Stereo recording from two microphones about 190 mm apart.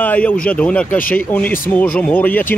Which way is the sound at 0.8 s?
45° left (ahead or behind).